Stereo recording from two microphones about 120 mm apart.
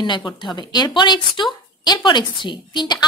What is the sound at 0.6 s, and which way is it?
Speech, 35° left (ahead or behind).